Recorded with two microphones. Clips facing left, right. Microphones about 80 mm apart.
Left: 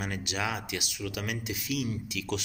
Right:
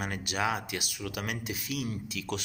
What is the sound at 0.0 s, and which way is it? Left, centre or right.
Speech, right.